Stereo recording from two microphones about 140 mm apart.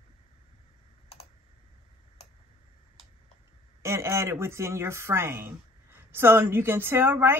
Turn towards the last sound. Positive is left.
turn(degrees=-15)  # may be behind; listen again after turning